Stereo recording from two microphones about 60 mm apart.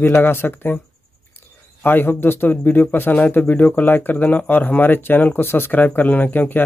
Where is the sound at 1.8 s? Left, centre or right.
Left.